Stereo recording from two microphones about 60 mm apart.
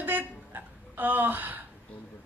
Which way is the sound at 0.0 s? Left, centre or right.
Right.